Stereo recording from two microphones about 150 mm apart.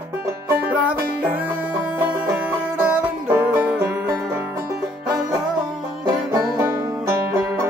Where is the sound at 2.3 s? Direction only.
10° right (ahead or behind).